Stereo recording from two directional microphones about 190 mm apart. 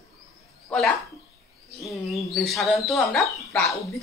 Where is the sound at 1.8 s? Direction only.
Centre (ahead or behind).